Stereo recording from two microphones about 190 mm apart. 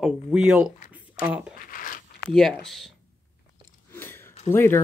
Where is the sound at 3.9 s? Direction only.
10° left (ahead or behind).